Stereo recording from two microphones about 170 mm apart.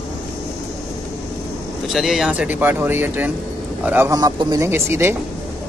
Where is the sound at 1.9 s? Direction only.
Centre (ahead or behind).